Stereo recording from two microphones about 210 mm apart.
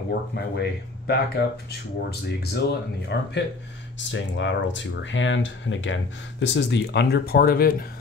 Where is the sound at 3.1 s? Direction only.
55° left (ahead or behind).